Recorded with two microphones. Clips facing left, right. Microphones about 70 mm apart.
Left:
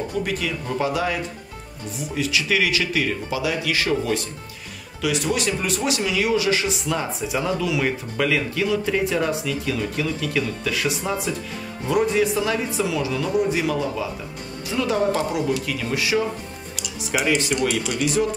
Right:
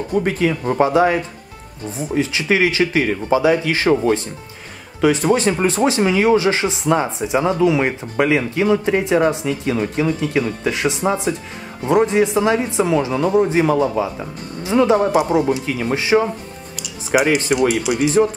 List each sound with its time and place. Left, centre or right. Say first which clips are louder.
0.1 s speech: right 7 dB; right